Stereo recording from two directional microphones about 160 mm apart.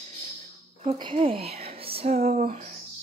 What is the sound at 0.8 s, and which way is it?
Speech, 35° right (ahead or behind).